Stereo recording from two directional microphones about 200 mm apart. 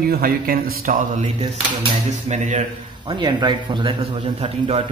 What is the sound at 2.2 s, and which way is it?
Speech, 35° right (ahead or behind).